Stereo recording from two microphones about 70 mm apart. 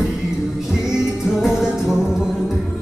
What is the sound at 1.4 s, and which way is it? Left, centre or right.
Music, centre.